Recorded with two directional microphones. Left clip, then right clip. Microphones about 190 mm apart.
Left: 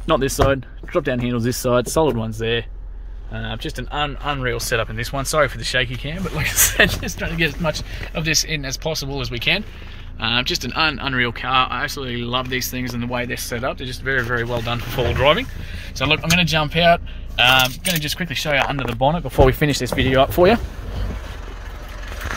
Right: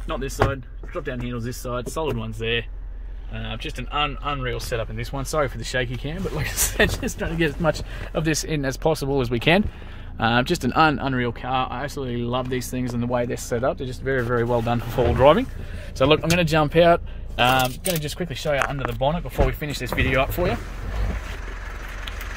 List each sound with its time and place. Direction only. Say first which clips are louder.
0.0 s speech: left 7 dB; 65° left (ahead or behind)
2.0 s speech: left 8 dB; 35° left (ahead or behind); by 4.8 s 20° left (ahead or behind)
4.9 s speech: left 6 dB; 5° right (ahead or behind)
7.0 s speech: left 3 dB; 35° right (ahead or behind)
16.0 s speech: left 1 dB; 45° right (ahead or behind); by 18.3 s 30° right (ahead or behind)
18.9 s speech: left 5 dB; 20° left (ahead or behind)
19.3 s speech: left 9 dB; 45° left (ahead or behind)
19.8 s speech: left 3 dB; 20° left (ahead or behind)